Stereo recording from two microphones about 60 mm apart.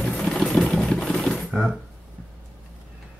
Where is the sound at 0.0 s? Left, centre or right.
Centre.